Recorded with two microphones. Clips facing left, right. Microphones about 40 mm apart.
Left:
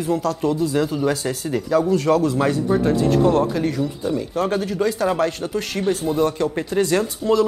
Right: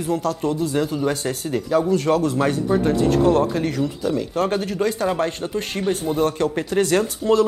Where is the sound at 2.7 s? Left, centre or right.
Centre.